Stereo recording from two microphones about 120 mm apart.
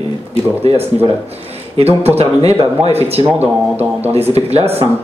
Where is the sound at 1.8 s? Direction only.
55° right (ahead or behind).